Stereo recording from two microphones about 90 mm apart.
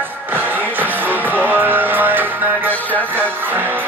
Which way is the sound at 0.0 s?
20° right (ahead or behind).